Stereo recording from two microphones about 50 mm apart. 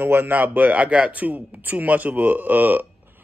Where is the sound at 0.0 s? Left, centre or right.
Right.